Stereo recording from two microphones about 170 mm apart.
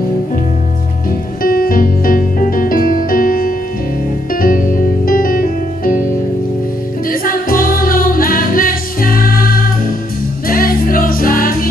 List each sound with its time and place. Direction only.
1.4 s music: 60° left (ahead or behind)
7.1 s music: 55° left (ahead or behind)